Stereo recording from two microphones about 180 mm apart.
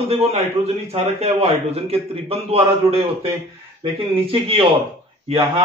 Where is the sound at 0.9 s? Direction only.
35° right (ahead or behind).